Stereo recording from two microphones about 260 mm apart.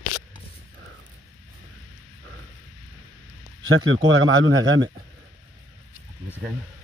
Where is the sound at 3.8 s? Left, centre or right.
Right.